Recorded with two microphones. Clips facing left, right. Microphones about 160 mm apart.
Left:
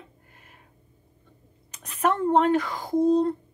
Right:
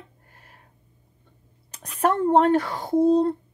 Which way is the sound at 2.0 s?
35° right (ahead or behind).